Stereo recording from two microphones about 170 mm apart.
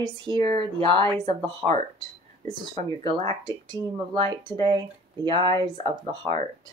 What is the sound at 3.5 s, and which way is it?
Speech, 25° right (ahead or behind).